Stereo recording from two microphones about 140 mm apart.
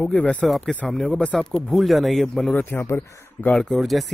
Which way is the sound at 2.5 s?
15° left (ahead or behind).